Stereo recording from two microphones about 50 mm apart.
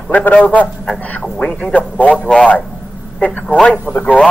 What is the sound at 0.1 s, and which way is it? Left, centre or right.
A man's voice, left.